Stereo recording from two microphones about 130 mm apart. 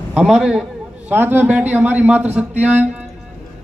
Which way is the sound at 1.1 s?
15° right (ahead or behind).